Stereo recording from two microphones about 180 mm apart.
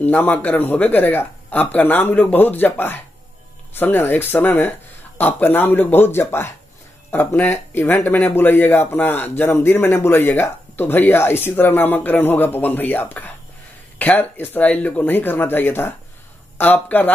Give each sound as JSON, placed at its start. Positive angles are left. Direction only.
{"t": 0.0, "sound": "speech", "side_deg": 10}